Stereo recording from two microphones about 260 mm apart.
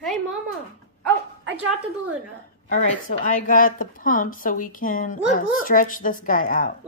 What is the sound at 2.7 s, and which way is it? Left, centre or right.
Speech, left.